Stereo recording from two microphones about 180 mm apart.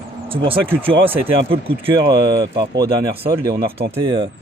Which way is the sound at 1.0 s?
10° right (ahead or behind).